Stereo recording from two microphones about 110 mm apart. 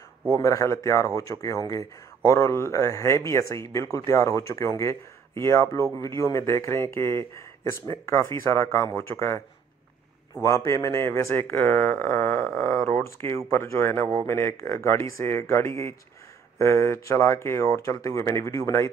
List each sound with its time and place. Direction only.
0.3 s a man's voice: 30° left (ahead or behind)
10.4 s a man's voice: 30° left (ahead or behind)